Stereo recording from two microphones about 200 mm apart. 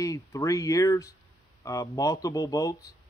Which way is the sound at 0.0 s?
15° left (ahead or behind).